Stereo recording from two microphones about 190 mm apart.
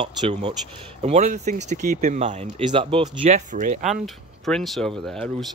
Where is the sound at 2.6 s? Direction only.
25° right (ahead or behind).